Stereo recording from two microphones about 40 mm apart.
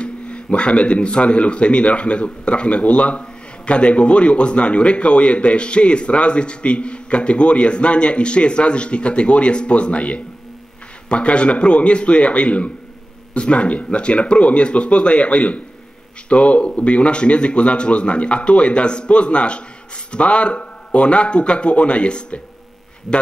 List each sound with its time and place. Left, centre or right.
0.0 s a man's voice: left